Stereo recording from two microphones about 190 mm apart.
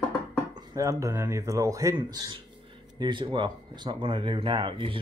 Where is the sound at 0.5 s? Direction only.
15° right (ahead or behind).